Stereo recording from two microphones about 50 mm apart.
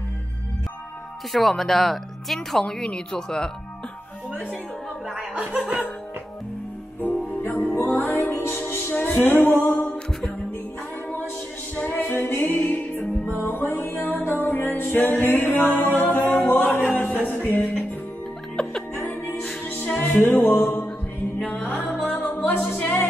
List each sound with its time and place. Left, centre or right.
1.3 s speech: centre
2.6 s speech: left
5.1 s chuckle: right
7.0 s music: left
8.3 s music: left
11.7 s music: left
18.6 s music: centre
20.0 s music: left